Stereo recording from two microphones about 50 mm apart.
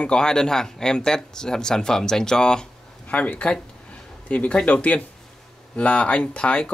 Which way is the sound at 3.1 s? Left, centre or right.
Left.